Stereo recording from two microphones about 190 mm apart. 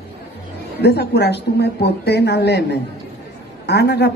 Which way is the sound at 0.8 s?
60° left (ahead or behind).